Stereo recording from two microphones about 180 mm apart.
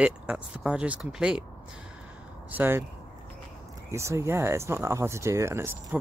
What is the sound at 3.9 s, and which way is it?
Speech, 15° right (ahead or behind).